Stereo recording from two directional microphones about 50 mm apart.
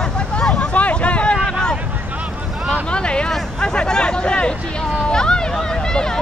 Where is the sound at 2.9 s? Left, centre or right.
Centre.